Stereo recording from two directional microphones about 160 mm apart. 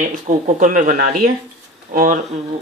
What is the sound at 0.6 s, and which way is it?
Speech, 55° right (ahead or behind).